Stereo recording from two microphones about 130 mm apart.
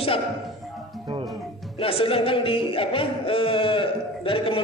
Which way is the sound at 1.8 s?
45° left (ahead or behind).